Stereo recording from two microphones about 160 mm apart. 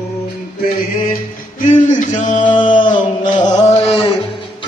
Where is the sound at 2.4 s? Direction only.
30° left (ahead or behind).